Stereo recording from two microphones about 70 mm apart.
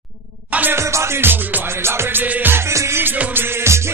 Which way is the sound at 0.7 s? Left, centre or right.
Right.